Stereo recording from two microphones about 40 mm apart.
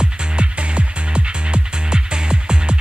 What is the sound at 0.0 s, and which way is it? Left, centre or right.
Music, right.